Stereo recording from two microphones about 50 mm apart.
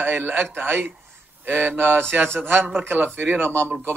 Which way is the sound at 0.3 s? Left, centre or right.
Right.